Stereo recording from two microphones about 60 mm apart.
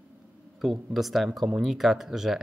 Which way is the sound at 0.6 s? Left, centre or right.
Centre.